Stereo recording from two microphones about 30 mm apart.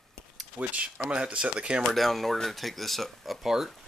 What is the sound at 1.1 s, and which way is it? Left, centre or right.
Speech, right.